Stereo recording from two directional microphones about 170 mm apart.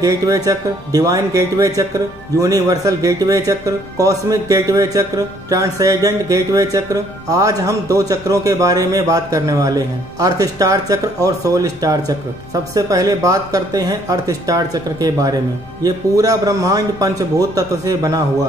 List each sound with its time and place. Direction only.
0.0 s speech: 20° right (ahead or behind)